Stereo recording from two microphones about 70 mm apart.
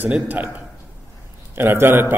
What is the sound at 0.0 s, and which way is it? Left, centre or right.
Speech, right.